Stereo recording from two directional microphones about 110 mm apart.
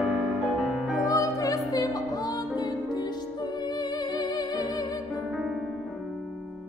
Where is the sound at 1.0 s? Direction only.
30° left (ahead or behind).